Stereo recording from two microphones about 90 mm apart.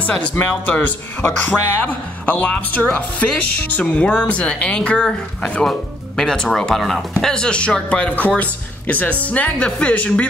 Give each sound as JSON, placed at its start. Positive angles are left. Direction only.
{"t": 0.1, "sound": "speech", "side_deg": 15}